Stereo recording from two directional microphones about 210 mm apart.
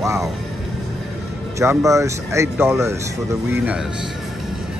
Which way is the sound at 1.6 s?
15° right (ahead or behind).